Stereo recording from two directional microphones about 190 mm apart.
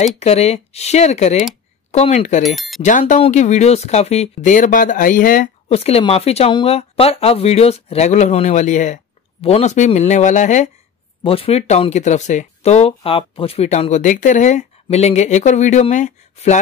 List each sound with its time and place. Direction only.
0.2 s speech: 35° left (ahead or behind)
2.4 s speech: centre (ahead or behind)
2.8 s speech: 40° left (ahead or behind)